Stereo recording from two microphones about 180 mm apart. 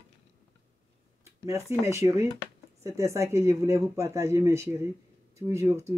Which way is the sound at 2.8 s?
15° right (ahead or behind).